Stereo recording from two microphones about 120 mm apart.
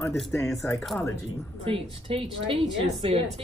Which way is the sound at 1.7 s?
50° right (ahead or behind).